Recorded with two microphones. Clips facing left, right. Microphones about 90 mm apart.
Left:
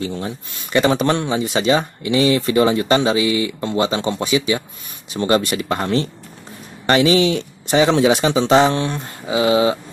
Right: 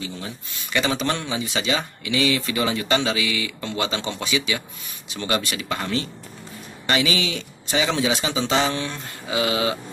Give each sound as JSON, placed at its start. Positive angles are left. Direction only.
{"t": 0.0, "sound": "speech", "side_deg": 50}
{"t": 8.9, "sound": "mantra", "side_deg": 25}